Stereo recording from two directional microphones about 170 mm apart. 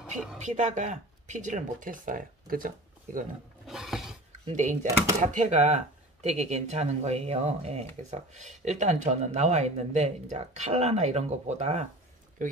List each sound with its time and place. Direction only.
0.4 s speech: 45° right (ahead or behind)
3.6 s a sound: centre (ahead or behind)
4.5 s speech: 45° right (ahead or behind)